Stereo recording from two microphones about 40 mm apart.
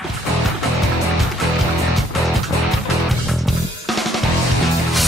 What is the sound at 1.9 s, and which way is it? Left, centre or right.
Music, centre.